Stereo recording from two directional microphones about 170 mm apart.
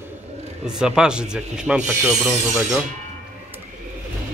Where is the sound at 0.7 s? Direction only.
5° right (ahead or behind).